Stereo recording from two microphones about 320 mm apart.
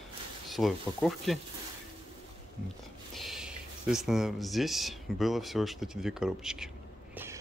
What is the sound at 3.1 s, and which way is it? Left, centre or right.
Speech, centre.